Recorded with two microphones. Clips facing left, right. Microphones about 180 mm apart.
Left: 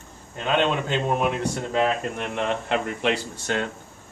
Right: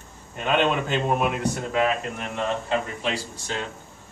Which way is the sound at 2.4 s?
65° left (ahead or behind).